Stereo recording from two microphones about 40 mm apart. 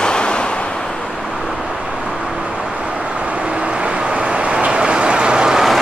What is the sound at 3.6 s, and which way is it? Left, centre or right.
Vehicle, right.